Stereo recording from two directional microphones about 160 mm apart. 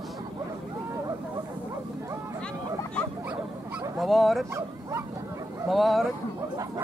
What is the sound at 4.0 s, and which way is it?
Dog, centre (ahead or behind).